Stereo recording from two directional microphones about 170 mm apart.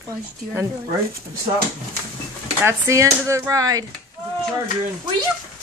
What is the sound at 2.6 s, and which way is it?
Speech, 15° right (ahead or behind).